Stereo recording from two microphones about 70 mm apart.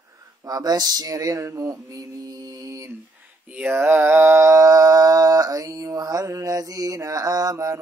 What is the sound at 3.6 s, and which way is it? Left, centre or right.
Mantra, right.